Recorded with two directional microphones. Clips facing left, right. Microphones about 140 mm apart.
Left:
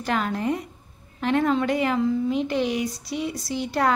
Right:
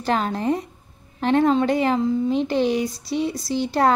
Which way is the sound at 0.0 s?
30° right (ahead or behind).